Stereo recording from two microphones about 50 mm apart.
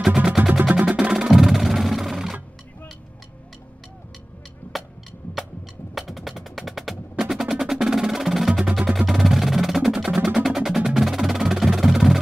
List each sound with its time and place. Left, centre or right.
0.6 s music: right
0.8 s percussion: centre
1.3 s music: centre
5.9 s percussion: centre
11.0 s music: centre